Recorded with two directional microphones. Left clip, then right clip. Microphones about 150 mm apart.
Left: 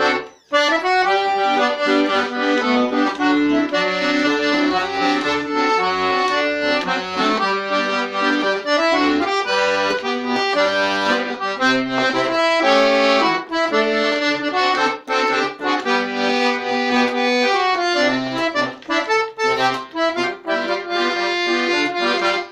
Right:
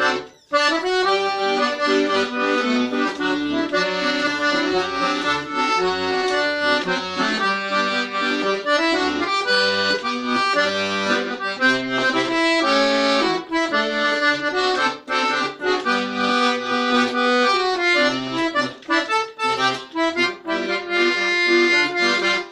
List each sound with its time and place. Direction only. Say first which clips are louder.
1.2 s accordion: left 3 dB; 25° left (ahead or behind)
2.7 s accordion: left 4 dB; 25° left (ahead or behind)
6.4 s accordion: left 1 dB; 30° left (ahead or behind)
9.5 s accordion: right 1 dB; 30° left (ahead or behind)
15.9 s accordion: left 2 dB; 25° left (ahead or behind)
21.0 s accordion: right 3 dB; 35° left (ahead or behind)